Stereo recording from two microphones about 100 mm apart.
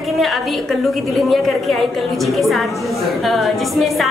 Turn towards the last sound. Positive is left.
turn(degrees=0)  # may be behind; listen again after turning